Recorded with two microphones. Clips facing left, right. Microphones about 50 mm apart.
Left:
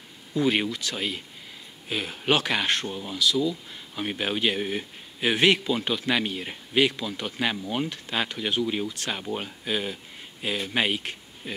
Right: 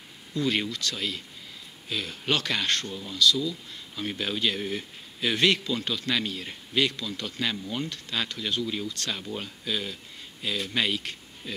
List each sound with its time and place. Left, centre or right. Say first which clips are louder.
0.3 s speech: left 3 dB; centre
2.9 s speech: left 3 dB; left
3.2 s speech: even; centre
8.6 s speech: left 3 dB; left